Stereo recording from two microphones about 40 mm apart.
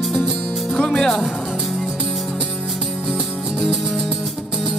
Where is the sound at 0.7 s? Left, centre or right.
Centre.